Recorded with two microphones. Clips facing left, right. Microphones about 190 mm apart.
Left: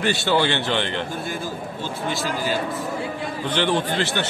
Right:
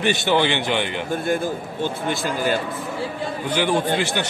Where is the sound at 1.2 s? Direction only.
55° right (ahead or behind).